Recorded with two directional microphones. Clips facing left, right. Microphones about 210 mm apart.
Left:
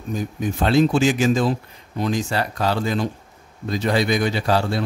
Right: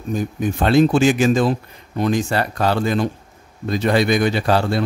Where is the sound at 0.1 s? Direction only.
55° right (ahead or behind).